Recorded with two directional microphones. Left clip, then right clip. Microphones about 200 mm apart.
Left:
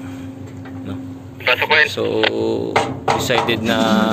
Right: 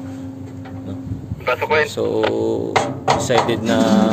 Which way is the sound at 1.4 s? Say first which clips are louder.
Left 3 dB; 20° right (ahead or behind).